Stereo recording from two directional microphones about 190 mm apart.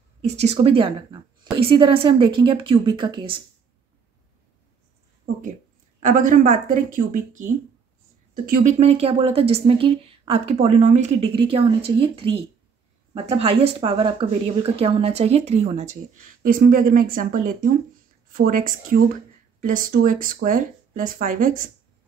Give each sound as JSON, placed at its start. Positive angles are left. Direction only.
{"t": 0.2, "sound": "a woman's voice", "side_deg": -35}
{"t": 5.9, "sound": "a woman's voice", "side_deg": -45}